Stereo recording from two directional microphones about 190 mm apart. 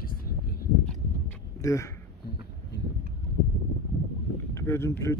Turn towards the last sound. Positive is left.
turn(degrees=15)  # may be behind; listen again after turning